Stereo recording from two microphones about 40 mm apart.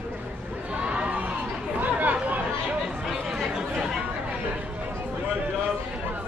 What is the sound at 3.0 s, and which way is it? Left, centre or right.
Chatter, centre.